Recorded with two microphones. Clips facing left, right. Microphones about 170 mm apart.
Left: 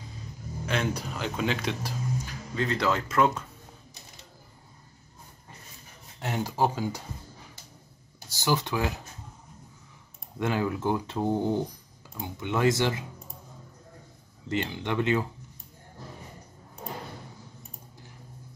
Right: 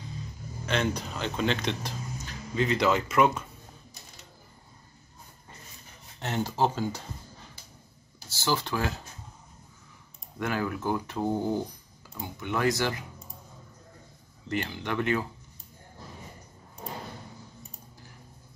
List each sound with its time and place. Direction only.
0.7 s speech: 5° left (ahead or behind)
2.5 s speech: 10° right (ahead or behind)
6.2 s speech: 10° left (ahead or behind)
10.4 s speech: 20° left (ahead or behind)
14.5 s speech: 20° left (ahead or behind)